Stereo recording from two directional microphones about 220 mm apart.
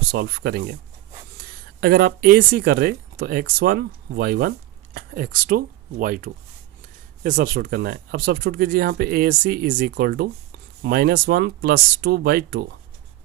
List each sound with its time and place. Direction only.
0.1 s speech: 45° right (ahead or behind)